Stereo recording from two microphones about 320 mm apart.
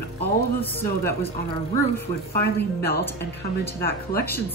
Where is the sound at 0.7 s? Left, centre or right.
Centre.